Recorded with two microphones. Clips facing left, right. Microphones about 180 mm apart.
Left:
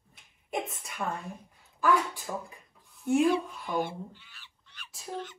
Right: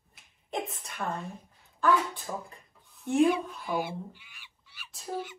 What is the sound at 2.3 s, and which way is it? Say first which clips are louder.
Speech: left 2 dB; 5° left (ahead or behind).